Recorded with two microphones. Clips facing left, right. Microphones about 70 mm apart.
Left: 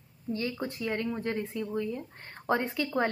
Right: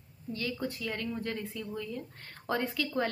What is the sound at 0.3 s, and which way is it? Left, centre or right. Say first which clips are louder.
A woman's voice: left 2 dB; left.